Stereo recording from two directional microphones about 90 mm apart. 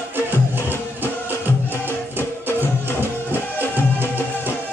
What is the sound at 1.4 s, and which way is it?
Music, 25° right (ahead or behind).